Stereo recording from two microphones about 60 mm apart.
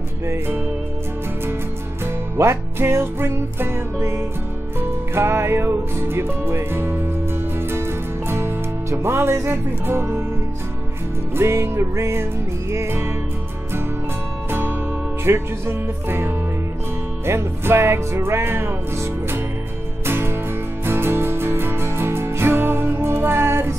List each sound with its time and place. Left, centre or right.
2.3 s music: right
11.3 s music: right
15.2 s music: right
20.1 s music: right